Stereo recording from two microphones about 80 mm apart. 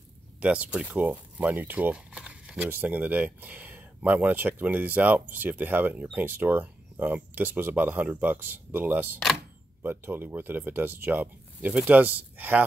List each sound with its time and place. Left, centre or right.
0.4 s speech: centre